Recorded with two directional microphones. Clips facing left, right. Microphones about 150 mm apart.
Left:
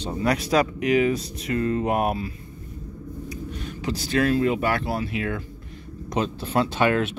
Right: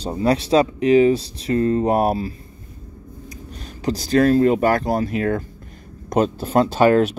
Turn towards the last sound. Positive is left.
turn(degrees=-40)  # may be behind; listen again after turning